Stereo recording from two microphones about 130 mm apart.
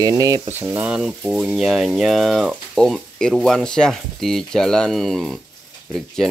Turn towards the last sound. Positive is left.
turn(degrees=5)  # may be behind; listen again after turning